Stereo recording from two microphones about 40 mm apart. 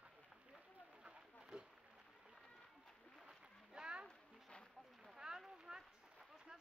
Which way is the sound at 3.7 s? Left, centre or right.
Right.